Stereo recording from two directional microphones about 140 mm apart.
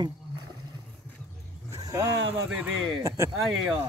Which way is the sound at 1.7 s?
25° right (ahead or behind).